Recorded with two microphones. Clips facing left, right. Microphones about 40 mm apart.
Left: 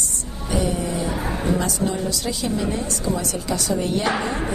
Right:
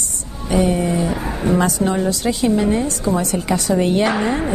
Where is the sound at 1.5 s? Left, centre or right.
Right.